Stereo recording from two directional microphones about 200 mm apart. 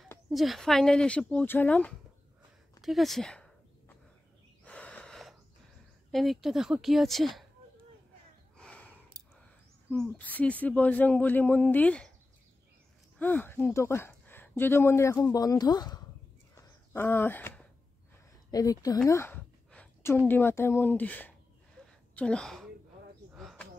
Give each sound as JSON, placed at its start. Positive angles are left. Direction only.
{"t": 0.3, "sound": "speech", "side_deg": 0}
{"t": 4.6, "sound": "gasp", "side_deg": 5}
{"t": 6.1, "sound": "speech", "side_deg": 0}
{"t": 8.5, "sound": "a sound", "side_deg": 5}
{"t": 9.8, "sound": "speech", "side_deg": 5}
{"t": 13.2, "sound": "speech", "side_deg": 10}
{"t": 16.5, "sound": "a sound", "side_deg": 10}
{"t": 18.5, "sound": "a woman's voice", "side_deg": 20}
{"t": 23.3, "sound": "a sound", "side_deg": 0}